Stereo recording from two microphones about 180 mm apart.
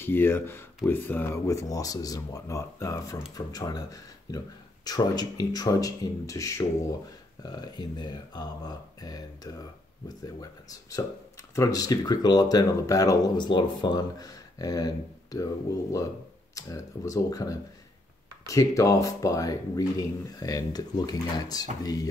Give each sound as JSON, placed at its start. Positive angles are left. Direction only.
{"t": 0.0, "sound": "speech", "side_deg": 10}